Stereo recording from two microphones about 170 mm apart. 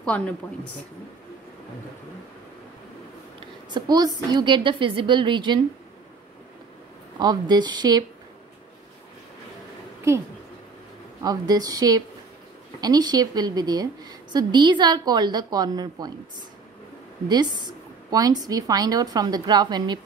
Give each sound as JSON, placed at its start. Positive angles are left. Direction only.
{"t": 0.0, "sound": "a woman's voice", "side_deg": 5}
{"t": 3.3, "sound": "a woman's voice", "side_deg": -25}
{"t": 7.2, "sound": "a woman's voice", "side_deg": -25}
{"t": 11.2, "sound": "a woman's voice", "side_deg": -20}
{"t": 17.3, "sound": "a woman's voice", "side_deg": -25}